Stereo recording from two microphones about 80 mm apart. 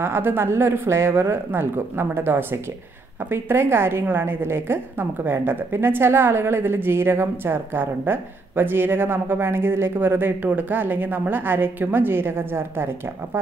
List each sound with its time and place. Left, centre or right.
0.0 s a woman's voice: right